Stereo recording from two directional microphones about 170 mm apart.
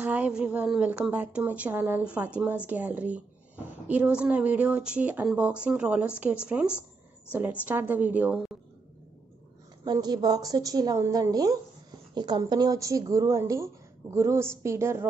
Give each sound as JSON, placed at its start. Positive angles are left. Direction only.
{"t": 0.0, "sound": "a woman's voice", "side_deg": -10}
{"t": 9.8, "sound": "a woman's voice", "side_deg": -25}